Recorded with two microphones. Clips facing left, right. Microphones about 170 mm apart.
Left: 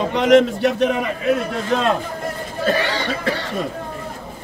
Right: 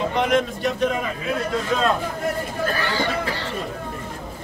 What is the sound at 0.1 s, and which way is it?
Speech, 75° left (ahead or behind).